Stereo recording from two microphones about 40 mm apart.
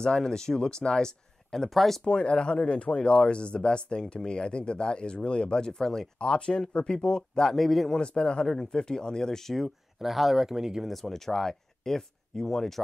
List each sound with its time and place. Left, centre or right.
0.0 s speech: centre
2.0 s speech: left
6.1 s speech: left
7.5 s speech: centre
8.0 s speech: left
9.6 s speech: centre
10.9 s speech: centre